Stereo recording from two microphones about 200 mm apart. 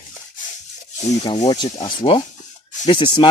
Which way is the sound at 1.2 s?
25° left (ahead or behind).